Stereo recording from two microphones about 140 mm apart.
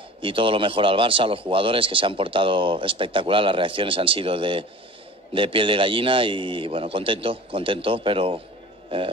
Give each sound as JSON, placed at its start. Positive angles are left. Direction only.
{"t": 0.2, "sound": "speech", "side_deg": -40}